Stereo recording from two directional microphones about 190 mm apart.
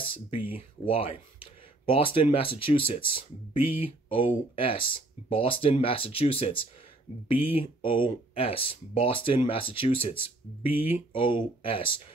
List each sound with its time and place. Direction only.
0.0 s speech: 25° left (ahead or behind)